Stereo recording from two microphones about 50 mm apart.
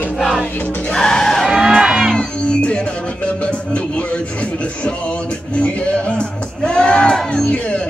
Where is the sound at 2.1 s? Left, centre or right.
Left.